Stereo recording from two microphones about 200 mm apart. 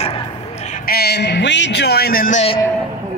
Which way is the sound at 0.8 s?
50° left (ahead or behind).